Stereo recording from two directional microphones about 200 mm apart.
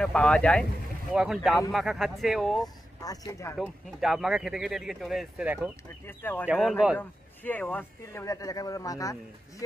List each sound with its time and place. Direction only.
0.0 s speech: 5° left (ahead or behind)
3.0 s speech: 15° left (ahead or behind)
3.5 s speech: centre (ahead or behind)
6.0 s speech: 10° left (ahead or behind)
6.4 s speech: 5° right (ahead or behind)
7.0 s speech: 10° left (ahead or behind)